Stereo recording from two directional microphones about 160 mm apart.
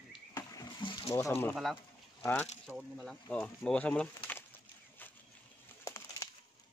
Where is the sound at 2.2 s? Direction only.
15° left (ahead or behind).